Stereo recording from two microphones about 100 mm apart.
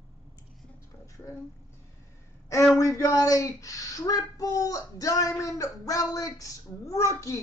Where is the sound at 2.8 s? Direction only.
35° left (ahead or behind).